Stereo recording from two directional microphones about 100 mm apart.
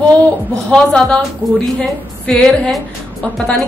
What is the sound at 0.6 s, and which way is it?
A woman's voice, 5° left (ahead or behind).